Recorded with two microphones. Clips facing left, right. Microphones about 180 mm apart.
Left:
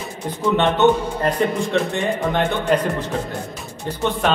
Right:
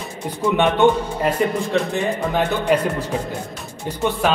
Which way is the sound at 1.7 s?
Centre (ahead or behind).